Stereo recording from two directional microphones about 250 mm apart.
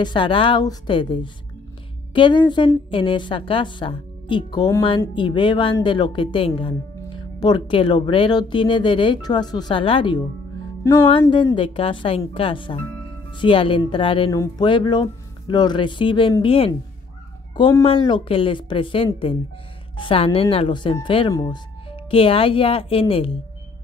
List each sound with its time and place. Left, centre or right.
0.0 s a woman's voice: centre